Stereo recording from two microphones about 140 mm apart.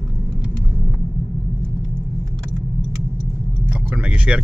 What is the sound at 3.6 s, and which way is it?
Vehicle, 10° right (ahead or behind).